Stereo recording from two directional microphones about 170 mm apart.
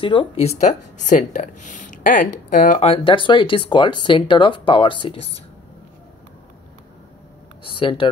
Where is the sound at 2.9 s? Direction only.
30° left (ahead or behind).